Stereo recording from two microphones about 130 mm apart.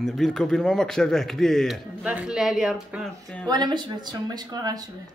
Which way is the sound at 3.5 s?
35° right (ahead or behind).